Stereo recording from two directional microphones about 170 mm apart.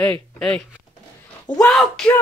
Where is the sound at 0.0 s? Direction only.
5° left (ahead or behind).